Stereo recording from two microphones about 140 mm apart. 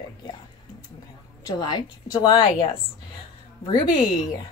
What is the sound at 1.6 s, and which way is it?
Speech, 30° left (ahead or behind).